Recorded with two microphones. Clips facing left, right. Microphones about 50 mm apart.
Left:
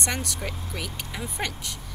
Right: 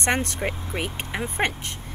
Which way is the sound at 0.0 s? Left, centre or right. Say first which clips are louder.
Right 6 dB; right.